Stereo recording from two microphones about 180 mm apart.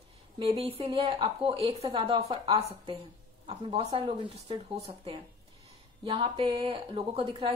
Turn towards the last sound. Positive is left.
turn(degrees=-30)  # may be behind; listen again after turning